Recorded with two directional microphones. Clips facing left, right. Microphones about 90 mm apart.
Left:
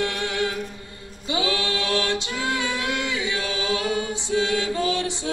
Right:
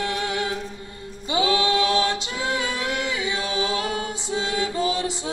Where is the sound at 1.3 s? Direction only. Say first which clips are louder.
Right 4 dB; 30° right (ahead or behind).